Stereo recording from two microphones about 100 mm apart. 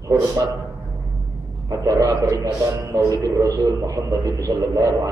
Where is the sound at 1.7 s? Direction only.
35° right (ahead or behind).